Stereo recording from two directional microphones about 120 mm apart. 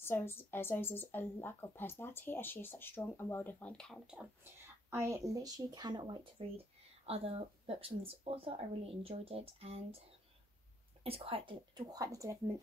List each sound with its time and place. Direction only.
0.0 s speech: 20° left (ahead or behind)
4.8 s speech: 20° right (ahead or behind); by 6.2 s 40° right (ahead or behind)
7.1 s speech: 55° right (ahead or behind)
11.1 s speech: 50° right (ahead or behind)
11.9 s speech: 30° right (ahead or behind)